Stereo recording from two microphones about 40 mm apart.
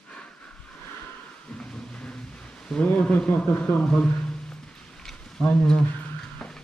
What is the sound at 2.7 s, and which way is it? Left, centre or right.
Speech, left.